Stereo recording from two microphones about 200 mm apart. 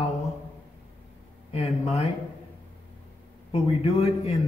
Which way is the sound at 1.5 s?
30° left (ahead or behind).